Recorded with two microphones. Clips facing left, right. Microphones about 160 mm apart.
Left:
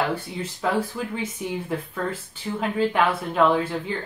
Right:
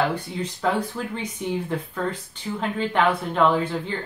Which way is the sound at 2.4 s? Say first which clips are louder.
Left 1 dB; 5° left (ahead or behind).